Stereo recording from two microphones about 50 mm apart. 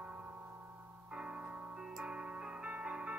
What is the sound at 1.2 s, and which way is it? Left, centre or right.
Music, right.